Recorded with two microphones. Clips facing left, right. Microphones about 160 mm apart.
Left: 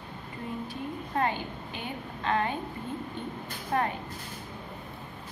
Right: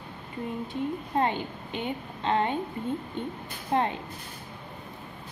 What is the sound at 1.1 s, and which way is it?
A woman's voice, 20° right (ahead or behind).